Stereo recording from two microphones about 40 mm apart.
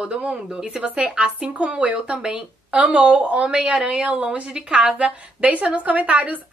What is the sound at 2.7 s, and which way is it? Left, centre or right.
A woman's voice, right.